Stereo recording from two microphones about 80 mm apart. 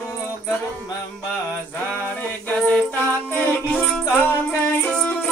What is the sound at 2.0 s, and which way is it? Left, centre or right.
Music, centre.